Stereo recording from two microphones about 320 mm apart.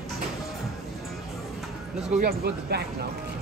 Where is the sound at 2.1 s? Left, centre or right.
Right.